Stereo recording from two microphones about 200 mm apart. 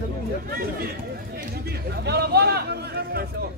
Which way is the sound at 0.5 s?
50° right (ahead or behind).